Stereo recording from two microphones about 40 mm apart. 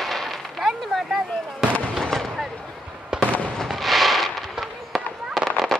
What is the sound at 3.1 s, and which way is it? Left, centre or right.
Fireworks, right.